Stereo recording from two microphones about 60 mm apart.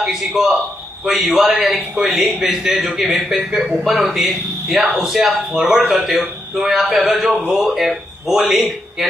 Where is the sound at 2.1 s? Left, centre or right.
Right.